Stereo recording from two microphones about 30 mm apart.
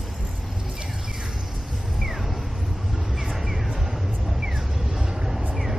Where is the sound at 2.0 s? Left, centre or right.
Centre.